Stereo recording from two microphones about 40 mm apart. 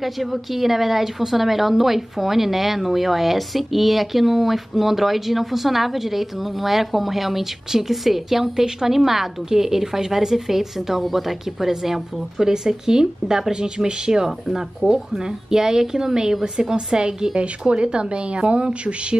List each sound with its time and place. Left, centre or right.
0.0 s a woman's voice: centre; by 15.0 s right
15.5 s a woman's voice: centre; by 19.1 s right